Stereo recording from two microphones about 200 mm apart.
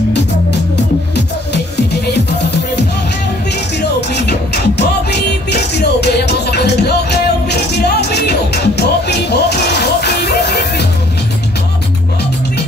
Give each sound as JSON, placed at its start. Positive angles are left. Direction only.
{"t": 3.7, "sound": "music", "side_deg": 55}